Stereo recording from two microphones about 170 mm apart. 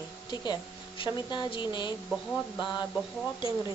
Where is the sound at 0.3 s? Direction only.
25° left (ahead or behind).